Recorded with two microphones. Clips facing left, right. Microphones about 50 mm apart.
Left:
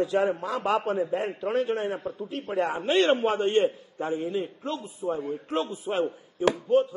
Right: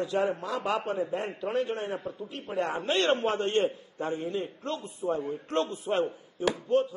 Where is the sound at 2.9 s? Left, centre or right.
Centre.